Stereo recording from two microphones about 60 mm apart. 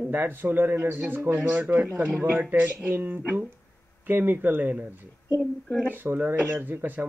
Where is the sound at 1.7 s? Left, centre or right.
Right.